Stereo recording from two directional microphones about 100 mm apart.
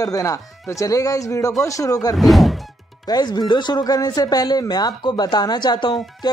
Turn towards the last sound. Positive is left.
turn(degrees=50)  # may be behind; listen again after turning